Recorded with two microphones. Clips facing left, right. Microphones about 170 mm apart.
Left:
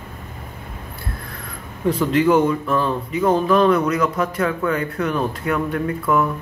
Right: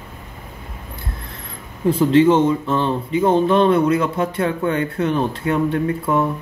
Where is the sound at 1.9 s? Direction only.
25° right (ahead or behind).